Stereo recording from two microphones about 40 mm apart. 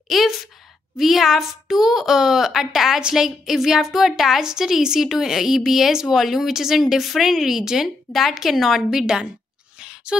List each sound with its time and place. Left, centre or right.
0.1 s a woman's voice: centre
8.1 s a woman's voice: centre
9.8 s a sound: right